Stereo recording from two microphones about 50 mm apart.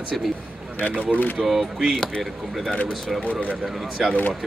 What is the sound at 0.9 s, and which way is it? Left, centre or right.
Speech, right.